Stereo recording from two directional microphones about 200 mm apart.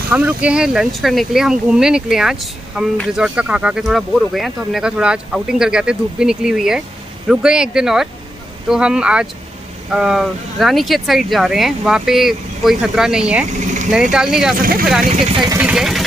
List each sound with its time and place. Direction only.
0.1 s speech: 5° right (ahead or behind)
14.6 s speech: 45° right (ahead or behind)
15.3 s speech: 20° right (ahead or behind)
15.6 s speech: centre (ahead or behind)